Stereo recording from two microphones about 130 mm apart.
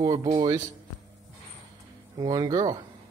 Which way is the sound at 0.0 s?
25° right (ahead or behind).